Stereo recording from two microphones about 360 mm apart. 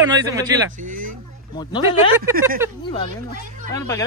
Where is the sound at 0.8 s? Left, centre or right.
Right.